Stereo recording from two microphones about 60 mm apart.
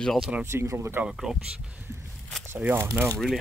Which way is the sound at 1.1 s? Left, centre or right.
Centre.